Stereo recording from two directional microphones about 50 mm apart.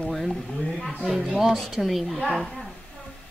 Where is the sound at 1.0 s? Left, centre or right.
Centre.